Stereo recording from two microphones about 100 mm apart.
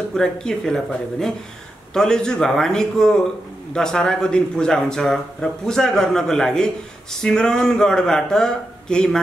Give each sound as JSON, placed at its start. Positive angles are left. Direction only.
{"t": 0.1, "sound": "a man's voice", "side_deg": 5}